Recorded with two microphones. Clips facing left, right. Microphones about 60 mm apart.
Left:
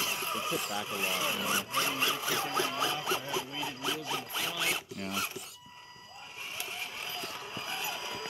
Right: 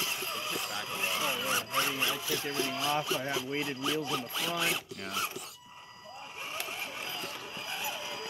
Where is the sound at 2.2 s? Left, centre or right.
Left.